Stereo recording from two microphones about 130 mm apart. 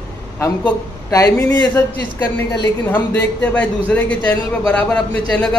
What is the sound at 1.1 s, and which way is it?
Speech, 25° left (ahead or behind).